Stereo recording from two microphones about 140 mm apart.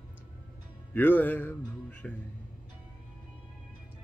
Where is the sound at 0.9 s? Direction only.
15° left (ahead or behind).